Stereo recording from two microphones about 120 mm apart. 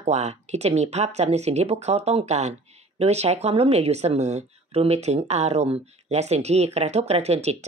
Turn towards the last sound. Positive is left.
turn(degrees=-65)  # may be behind; listen again after turning